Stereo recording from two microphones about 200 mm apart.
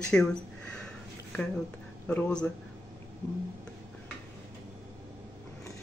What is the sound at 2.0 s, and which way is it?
Speech, 5° left (ahead or behind).